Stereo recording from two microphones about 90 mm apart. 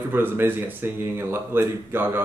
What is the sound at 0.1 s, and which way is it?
Speech, 25° right (ahead or behind).